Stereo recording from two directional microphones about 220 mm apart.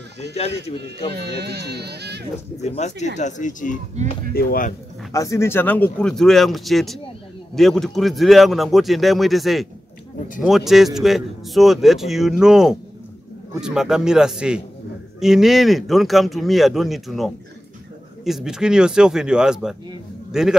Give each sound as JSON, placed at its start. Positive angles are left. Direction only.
{"t": 0.3, "sound": "speech", "side_deg": 30}
{"t": 1.1, "sound": "speech", "side_deg": -50}
{"t": 2.5, "sound": "speech", "side_deg": 30}
{"t": 4.0, "sound": "speech", "side_deg": -30}
{"t": 4.3, "sound": "speech", "side_deg": 40}
{"t": 5.1, "sound": "a man's voice", "side_deg": 15}